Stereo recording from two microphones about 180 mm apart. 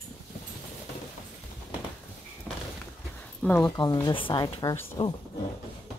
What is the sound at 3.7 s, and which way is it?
Speech, 25° left (ahead or behind).